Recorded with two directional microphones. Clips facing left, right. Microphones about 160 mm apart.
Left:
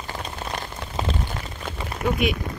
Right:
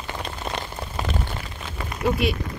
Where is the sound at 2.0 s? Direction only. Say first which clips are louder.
Right 1 dB; 50° left (ahead or behind).